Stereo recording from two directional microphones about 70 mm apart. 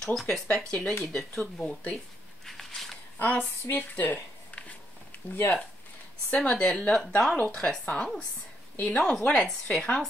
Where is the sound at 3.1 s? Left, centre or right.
Left.